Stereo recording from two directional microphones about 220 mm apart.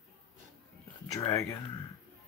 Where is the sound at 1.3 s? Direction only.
15° left (ahead or behind).